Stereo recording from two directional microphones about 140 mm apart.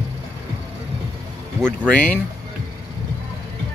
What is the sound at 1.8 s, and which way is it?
Speech, 10° left (ahead or behind).